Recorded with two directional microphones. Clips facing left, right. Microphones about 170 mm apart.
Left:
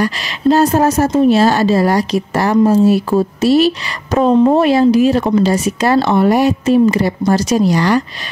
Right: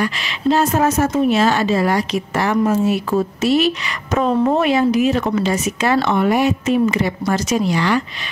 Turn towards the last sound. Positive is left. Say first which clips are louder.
# left 5 dB
turn(degrees=40)  # may be behind; listen again after turning